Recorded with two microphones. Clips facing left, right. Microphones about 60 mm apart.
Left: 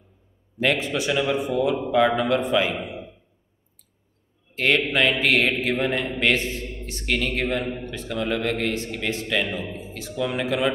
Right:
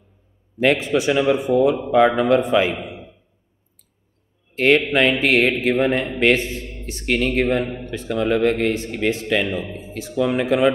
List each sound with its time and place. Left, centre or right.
0.6 s a man's voice: right
4.9 s a man's voice: right